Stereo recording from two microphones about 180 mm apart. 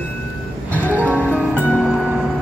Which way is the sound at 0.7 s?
10° left (ahead or behind).